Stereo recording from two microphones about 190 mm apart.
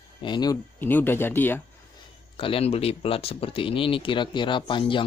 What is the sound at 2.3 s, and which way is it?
Speech, 30° left (ahead or behind).